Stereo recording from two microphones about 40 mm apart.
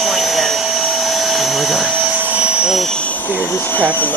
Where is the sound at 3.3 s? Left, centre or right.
Left.